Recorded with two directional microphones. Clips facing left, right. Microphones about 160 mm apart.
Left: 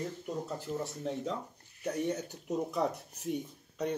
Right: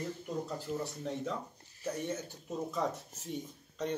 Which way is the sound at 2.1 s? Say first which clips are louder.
Left 4 dB; 15° left (ahead or behind).